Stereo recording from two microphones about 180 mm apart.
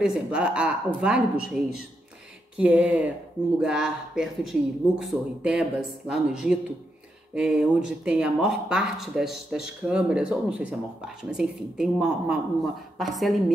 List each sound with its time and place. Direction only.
0.0 s a woman's voice: 5° right (ahead or behind)